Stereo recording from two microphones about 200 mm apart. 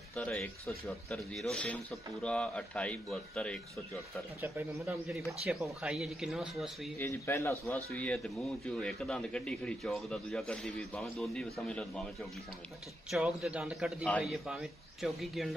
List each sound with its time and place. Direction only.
0.1 s a man's voice: 5° left (ahead or behind)
7.0 s a man's voice: 15° left (ahead or behind)